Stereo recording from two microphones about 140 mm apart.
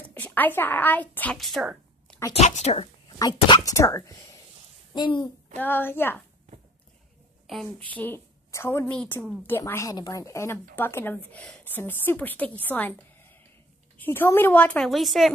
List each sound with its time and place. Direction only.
0.0 s speech: 10° left (ahead or behind)
1.4 s a sound: centre (ahead or behind)
2.3 s a woman's voice: 55° left (ahead or behind)
3.2 s speech: 30° left (ahead or behind)
5.6 s a woman's voice: 15° left (ahead or behind)
7.5 s speech: centre (ahead or behind)
8.0 s a woman's voice: 15° left (ahead or behind)
9.5 s a woman's voice: 15° left (ahead or behind)
14.9 s a woman's voice: centre (ahead or behind)